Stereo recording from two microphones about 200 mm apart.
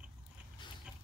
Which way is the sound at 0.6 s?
25° left (ahead or behind).